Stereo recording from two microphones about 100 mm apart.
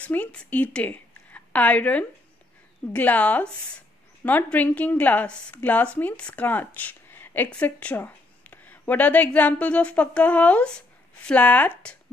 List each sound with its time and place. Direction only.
0.0 s a woman's voice: 15° left (ahead or behind)